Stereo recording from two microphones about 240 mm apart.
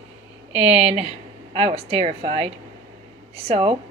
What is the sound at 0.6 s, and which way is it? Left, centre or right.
A woman's voice, right.